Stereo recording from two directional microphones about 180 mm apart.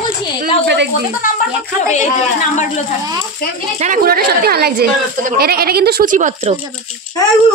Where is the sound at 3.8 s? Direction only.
55° right (ahead or behind).